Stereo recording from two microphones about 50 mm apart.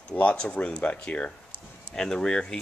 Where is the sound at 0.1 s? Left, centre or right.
Left.